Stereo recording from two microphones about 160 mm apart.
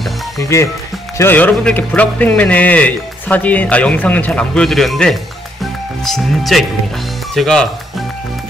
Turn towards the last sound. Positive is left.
turn(degrees=5)  # may be behind; listen again after turning